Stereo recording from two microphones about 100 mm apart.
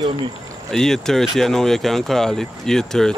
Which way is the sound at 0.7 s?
5° left (ahead or behind).